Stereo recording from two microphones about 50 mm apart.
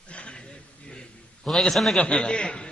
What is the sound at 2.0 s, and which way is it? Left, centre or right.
Speech, centre.